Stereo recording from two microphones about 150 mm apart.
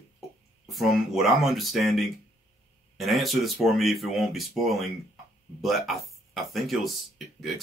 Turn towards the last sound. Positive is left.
turn(degrees=0)  # may be behind; listen again after turning